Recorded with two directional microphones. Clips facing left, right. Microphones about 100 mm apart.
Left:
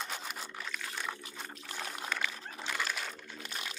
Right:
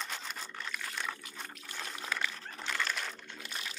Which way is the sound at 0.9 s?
15° left (ahead or behind).